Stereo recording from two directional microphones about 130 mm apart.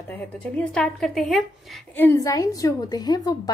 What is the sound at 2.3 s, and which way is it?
A woman's voice, 25° left (ahead or behind).